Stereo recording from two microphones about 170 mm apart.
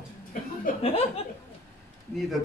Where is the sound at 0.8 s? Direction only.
35° left (ahead or behind).